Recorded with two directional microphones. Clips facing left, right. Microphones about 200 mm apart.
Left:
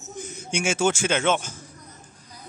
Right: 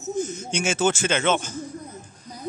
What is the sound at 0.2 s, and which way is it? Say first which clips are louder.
Speech: even; 10° left (ahead or behind).